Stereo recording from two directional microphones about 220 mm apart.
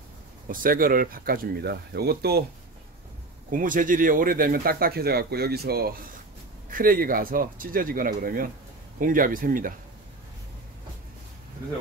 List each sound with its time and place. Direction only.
0.5 s speech: 40° right (ahead or behind)
3.4 s speech: 40° right (ahead or behind)